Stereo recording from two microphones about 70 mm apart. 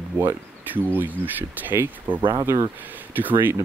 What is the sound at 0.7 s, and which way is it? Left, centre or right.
Speech, right.